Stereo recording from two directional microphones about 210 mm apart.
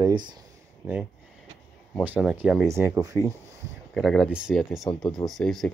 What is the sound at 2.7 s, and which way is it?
Speech, 10° right (ahead or behind).